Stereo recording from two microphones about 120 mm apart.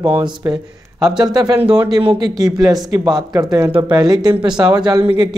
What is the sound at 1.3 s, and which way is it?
Speech, 30° right (ahead or behind).